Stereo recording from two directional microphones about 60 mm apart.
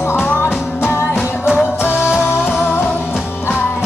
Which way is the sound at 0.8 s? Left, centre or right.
Left.